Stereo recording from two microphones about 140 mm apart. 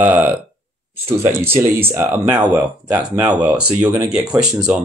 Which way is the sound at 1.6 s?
15° right (ahead or behind).